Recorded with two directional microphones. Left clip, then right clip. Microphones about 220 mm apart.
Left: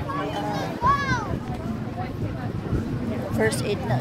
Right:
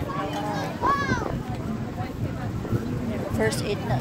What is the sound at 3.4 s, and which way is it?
Speech, 5° left (ahead or behind).